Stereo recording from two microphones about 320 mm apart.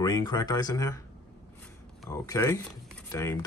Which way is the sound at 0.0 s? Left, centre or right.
Centre.